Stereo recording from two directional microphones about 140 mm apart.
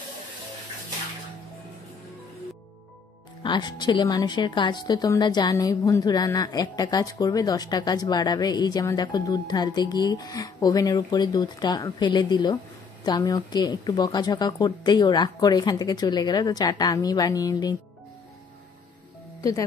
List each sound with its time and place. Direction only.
3.4 s speech: 30° left (ahead or behind)